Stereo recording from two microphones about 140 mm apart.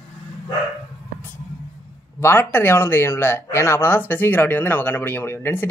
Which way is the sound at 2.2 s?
15° left (ahead or behind).